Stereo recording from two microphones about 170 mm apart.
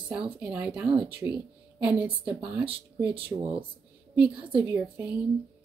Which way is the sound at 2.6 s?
30° right (ahead or behind).